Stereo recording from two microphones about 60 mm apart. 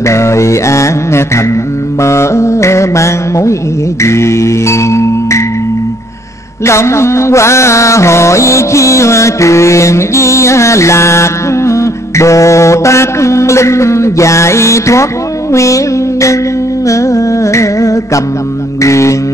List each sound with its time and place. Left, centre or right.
0.0 s mantra: left
4.0 s music: left
6.6 s mantra: left
15.5 s music: left
18.8 s mantra: left